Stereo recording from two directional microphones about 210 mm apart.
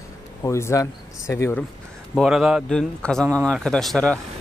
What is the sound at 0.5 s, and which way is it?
Speech, 15° left (ahead or behind).